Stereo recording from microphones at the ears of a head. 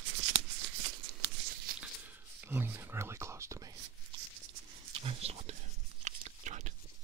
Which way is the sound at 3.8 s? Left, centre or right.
Right.